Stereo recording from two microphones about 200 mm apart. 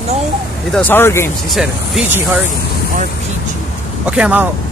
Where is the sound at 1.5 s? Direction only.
Centre (ahead or behind).